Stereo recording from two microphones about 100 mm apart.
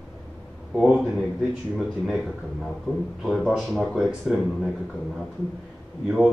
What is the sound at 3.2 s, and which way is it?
Speech, centre (ahead or behind).